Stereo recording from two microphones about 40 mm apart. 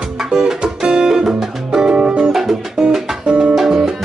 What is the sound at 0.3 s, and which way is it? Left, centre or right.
Music, centre.